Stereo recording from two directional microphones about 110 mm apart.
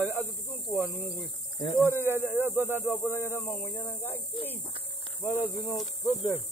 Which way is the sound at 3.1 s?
20° left (ahead or behind).